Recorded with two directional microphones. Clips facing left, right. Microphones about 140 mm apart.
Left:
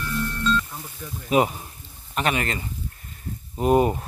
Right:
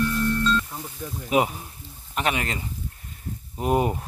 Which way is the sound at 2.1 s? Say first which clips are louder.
Left 1 dB; 15° right (ahead or behind).